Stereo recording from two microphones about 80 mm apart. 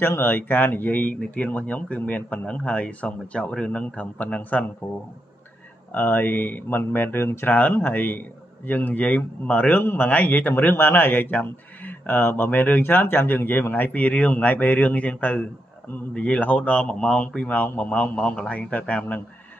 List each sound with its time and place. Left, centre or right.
0.0 s speech: left
5.9 s speech: left